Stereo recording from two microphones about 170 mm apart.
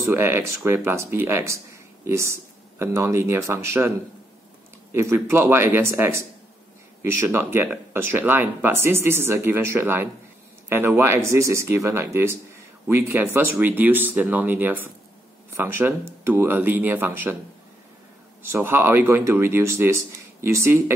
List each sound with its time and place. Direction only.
0.1 s speech: 15° right (ahead or behind)
4.9 s speech: 15° right (ahead or behind)
18.4 s speech: 15° right (ahead or behind)